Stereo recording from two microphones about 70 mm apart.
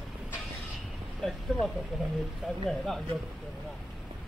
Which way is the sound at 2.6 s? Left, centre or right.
Centre.